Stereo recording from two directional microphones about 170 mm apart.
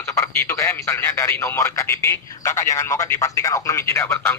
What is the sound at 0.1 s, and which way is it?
A man's voice, 15° left (ahead or behind).